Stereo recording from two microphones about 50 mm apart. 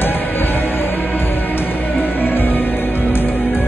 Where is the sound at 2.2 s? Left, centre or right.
Left.